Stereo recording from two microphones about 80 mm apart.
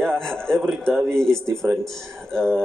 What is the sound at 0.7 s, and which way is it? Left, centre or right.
Speech, centre.